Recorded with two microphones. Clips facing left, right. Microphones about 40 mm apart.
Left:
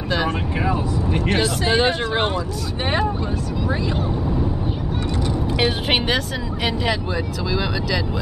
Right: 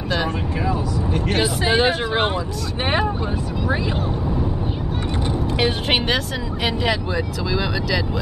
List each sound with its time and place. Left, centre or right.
0.6 s vehicle: left
1.3 s speech: centre
5.6 s speech: centre